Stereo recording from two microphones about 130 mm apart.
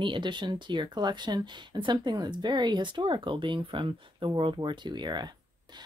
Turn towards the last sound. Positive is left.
turn(degrees=-35)  # may be behind; listen again after turning